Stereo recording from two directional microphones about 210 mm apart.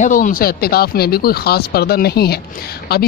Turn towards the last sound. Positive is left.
turn(degrees=50)  # may be behind; listen again after turning